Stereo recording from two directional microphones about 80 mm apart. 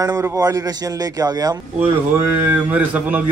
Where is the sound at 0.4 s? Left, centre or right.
Right.